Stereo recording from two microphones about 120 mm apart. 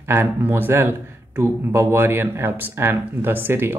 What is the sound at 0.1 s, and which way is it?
Speech, 20° right (ahead or behind).